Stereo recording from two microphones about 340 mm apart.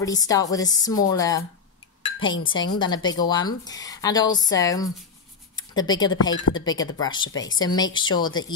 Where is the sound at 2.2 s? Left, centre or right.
Left.